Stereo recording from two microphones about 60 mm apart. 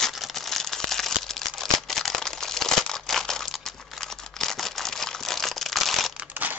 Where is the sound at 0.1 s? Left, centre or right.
Centre.